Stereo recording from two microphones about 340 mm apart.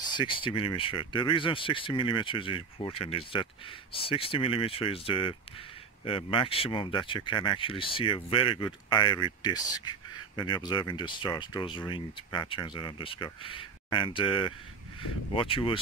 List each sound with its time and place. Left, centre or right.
0.1 s speech: centre